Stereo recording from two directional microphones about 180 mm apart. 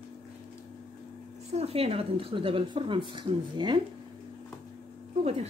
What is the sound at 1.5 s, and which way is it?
Speech, 35° right (ahead or behind).